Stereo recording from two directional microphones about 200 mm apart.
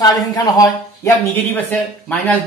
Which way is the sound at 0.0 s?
20° left (ahead or behind).